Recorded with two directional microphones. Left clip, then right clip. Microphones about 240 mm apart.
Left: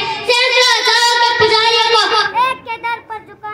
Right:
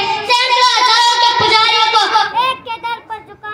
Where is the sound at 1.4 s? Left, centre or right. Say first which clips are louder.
Right 1 dB; left.